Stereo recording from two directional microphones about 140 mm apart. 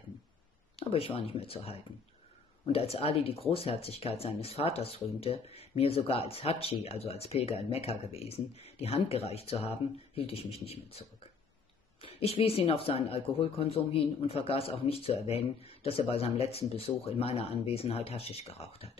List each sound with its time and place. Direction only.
0.7 s speech: 45° left (ahead or behind)